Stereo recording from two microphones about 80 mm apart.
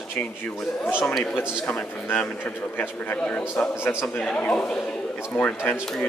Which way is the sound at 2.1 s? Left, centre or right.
Left.